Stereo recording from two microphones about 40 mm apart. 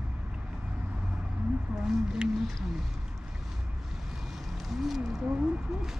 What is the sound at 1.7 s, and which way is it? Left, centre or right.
Speech, centre.